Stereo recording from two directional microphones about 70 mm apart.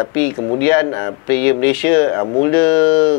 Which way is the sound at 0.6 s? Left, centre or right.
Left.